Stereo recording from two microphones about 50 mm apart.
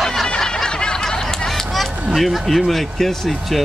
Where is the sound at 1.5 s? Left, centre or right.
Centre.